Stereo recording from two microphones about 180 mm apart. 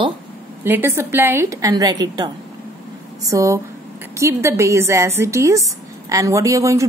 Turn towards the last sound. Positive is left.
turn(degrees=-15)  # may be behind; listen again after turning